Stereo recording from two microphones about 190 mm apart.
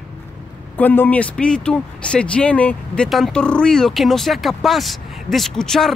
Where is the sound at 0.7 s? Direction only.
10° left (ahead or behind).